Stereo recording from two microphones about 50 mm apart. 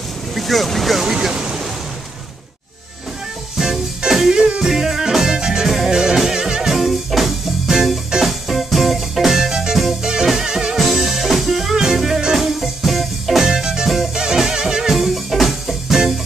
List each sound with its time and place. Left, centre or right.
0.3 s speech: centre
1.0 s waves: centre
3.5 s music: centre
4.4 s music: centre
4.6 s music: centre
13.5 s music: centre